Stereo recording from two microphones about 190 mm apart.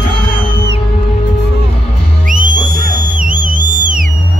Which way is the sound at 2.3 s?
45° right (ahead or behind).